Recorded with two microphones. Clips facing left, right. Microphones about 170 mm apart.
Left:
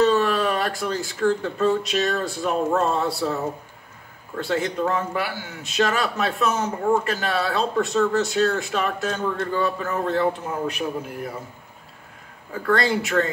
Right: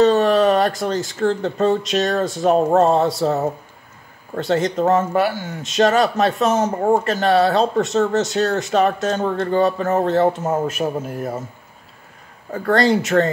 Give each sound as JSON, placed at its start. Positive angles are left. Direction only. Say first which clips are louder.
{"t": 0.0, "sound": "a sound", "louder": "right 5 dB", "side_deg": -40}
{"t": 1.2, "sound": "speech", "louder": "right 2 dB", "side_deg": -40}
{"t": 9.5, "sound": "a man's voice", "louder": "right 9 dB", "side_deg": -70}
{"t": 9.8, "sound": "speech", "louder": "right 6 dB", "side_deg": -40}
{"t": 12.5, "sound": "speech", "louder": "right 5 dB", "side_deg": -40}